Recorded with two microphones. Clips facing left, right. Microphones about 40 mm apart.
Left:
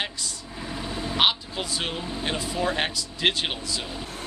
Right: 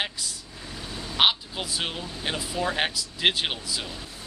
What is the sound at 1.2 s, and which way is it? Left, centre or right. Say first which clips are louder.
Speech: right 1 dB; centre.